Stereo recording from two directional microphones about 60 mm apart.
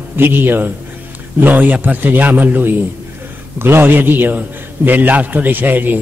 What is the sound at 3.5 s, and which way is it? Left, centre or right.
A man's voice, right.